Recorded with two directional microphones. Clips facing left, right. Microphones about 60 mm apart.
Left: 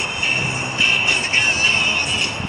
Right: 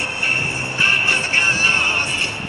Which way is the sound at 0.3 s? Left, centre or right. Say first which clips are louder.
Even; right.